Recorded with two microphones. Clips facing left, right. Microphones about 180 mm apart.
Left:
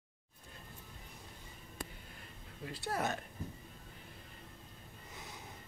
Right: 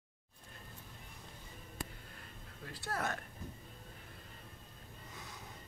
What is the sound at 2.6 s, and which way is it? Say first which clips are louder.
Speech: left 3 dB; 20° left (ahead or behind).